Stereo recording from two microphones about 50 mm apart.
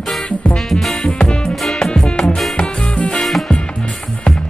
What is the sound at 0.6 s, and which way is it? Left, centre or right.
Music, centre.